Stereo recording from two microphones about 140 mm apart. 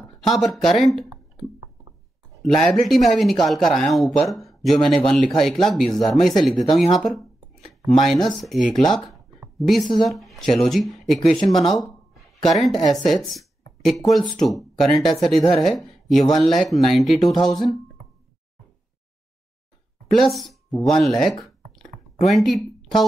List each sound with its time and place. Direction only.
0.2 s speech: centre (ahead or behind)
2.4 s speech: 5° left (ahead or behind)
20.1 s speech: centre (ahead or behind)
21.5 s a sound: centre (ahead or behind)